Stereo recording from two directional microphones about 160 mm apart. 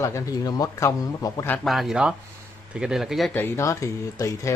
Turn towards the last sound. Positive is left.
turn(degrees=20)  # may be behind; listen again after turning